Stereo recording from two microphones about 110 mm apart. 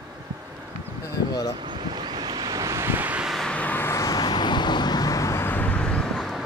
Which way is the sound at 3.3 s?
5° left (ahead or behind).